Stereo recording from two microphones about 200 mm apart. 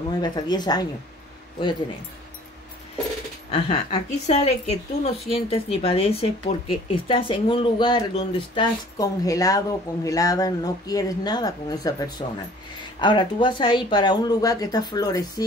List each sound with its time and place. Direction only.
0.2 s a woman's voice: 20° left (ahead or behind)
3.4 s a woman's voice: 30° left (ahead or behind)